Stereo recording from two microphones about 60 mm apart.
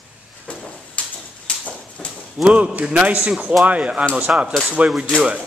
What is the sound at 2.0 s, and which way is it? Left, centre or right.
Clip-clop, centre.